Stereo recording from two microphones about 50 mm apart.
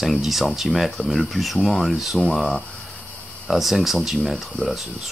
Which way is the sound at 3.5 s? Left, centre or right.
Centre.